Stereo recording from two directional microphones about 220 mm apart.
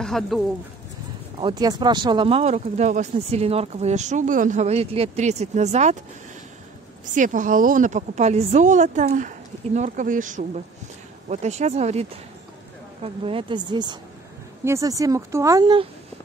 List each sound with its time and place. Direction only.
0.0 s speech: centre (ahead or behind)
1.4 s speech: 20° right (ahead or behind)
7.2 s a woman's voice: 35° right (ahead or behind); by 15.9 s 20° right (ahead or behind)